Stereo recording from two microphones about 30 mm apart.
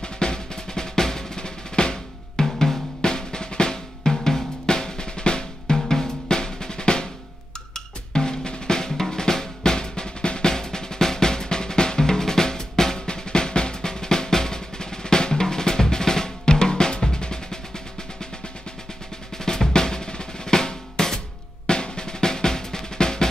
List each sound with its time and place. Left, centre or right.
0.0 s drum: left
2.4 s drum: centre
3.0 s drum: left
19.3 s drum: centre
21.6 s drum: left